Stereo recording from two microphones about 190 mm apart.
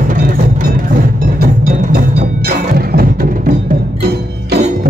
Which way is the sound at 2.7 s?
50° right (ahead or behind).